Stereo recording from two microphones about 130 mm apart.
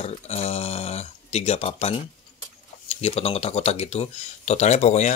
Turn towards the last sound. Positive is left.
turn(degrees=60)  # may be behind; listen again after turning